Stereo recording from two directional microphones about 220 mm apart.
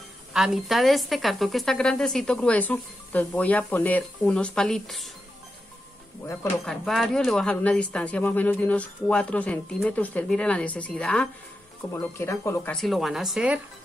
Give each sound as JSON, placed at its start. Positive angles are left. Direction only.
{"t": 0.3, "sound": "speech", "side_deg": 0}
{"t": 6.2, "sound": "speech", "side_deg": 0}
{"t": 12.7, "sound": "speech", "side_deg": 0}